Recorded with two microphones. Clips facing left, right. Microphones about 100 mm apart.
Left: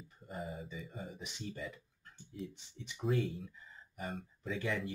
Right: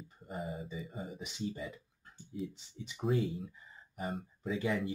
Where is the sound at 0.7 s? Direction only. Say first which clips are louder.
Right 3 dB; 5° right (ahead or behind).